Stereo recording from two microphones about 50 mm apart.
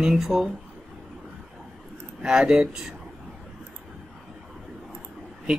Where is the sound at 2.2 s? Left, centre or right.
Centre.